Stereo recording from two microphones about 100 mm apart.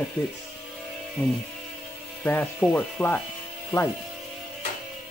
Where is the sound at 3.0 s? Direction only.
20° left (ahead or behind).